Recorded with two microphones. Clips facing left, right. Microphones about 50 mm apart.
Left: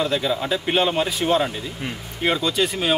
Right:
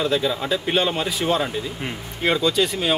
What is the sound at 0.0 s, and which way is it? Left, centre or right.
Speech, centre.